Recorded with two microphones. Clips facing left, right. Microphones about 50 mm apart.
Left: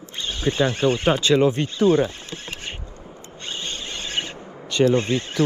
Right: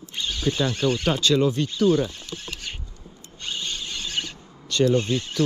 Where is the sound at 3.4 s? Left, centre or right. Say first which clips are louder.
Even; left.